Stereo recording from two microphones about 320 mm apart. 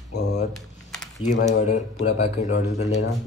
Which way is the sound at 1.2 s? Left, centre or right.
Left.